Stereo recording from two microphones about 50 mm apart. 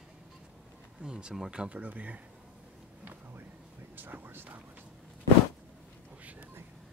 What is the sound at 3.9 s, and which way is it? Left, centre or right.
Speech, right.